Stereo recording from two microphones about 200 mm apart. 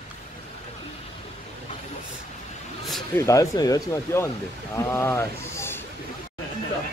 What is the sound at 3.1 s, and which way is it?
Speech, 15° left (ahead or behind).